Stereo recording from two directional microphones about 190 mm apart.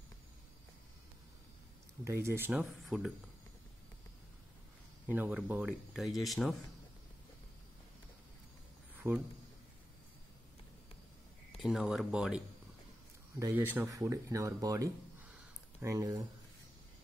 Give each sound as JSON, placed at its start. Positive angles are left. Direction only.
{"t": 2.0, "sound": "speech", "side_deg": -15}
{"t": 5.0, "sound": "speech", "side_deg": -10}
{"t": 8.9, "sound": "a sound", "side_deg": -10}
{"t": 11.5, "sound": "speech", "side_deg": 0}
{"t": 13.4, "sound": "speech", "side_deg": -10}